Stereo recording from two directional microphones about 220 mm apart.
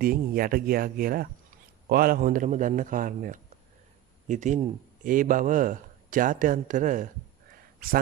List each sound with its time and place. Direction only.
0.0 s speech: 40° right (ahead or behind)